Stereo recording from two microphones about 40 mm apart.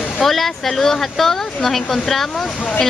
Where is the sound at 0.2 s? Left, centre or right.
Centre.